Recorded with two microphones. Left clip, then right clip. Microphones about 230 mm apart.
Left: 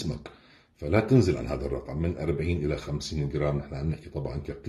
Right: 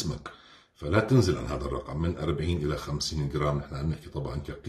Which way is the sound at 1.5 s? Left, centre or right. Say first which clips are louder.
Left 1 dB; right.